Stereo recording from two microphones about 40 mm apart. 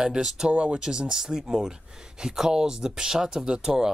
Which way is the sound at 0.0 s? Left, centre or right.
Centre.